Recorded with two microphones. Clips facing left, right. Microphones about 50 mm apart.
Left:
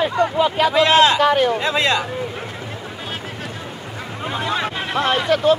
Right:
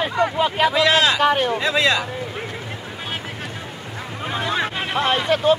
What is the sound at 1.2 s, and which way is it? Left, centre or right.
Speech, centre.